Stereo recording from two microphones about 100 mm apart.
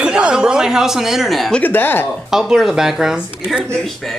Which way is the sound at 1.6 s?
20° left (ahead or behind).